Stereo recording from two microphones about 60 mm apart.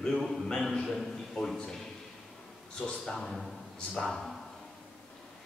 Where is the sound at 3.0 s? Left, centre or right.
Centre.